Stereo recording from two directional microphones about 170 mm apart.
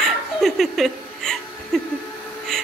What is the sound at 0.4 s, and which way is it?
Laughter, centre (ahead or behind).